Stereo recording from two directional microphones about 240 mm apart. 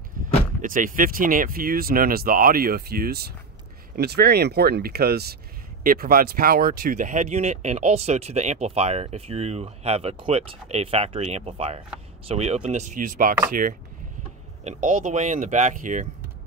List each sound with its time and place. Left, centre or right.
0.6 s speech: right